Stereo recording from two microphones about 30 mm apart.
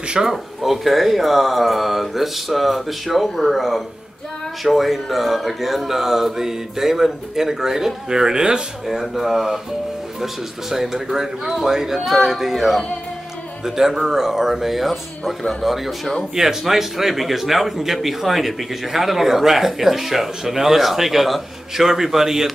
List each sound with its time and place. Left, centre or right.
0.2 s speech: centre; by 8.6 s right
9.1 s speech: centre